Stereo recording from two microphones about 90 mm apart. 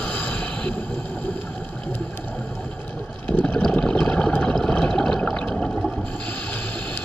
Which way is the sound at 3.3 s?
20° left (ahead or behind).